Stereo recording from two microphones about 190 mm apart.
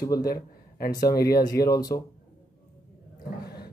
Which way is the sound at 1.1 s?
55° left (ahead or behind).